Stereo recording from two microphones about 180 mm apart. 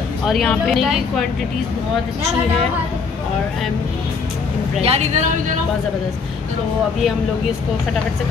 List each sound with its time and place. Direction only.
0.3 s speech: 5° left (ahead or behind)
4.8 s speech: 35° right (ahead or behind)